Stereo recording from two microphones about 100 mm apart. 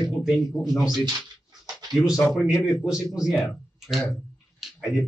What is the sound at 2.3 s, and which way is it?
Speech, centre (ahead or behind).